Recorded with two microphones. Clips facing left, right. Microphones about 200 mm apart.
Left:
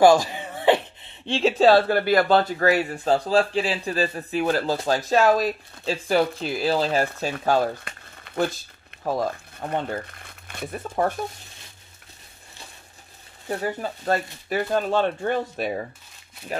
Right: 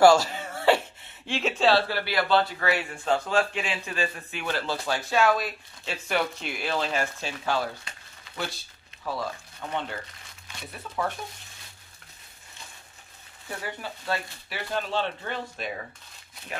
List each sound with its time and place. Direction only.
0.0 s wail: 15° left (ahead or behind)
1.2 s speech: 30° left (ahead or behind); by 11.1 s 45° left (ahead or behind)
13.5 s speech: 40° left (ahead or behind)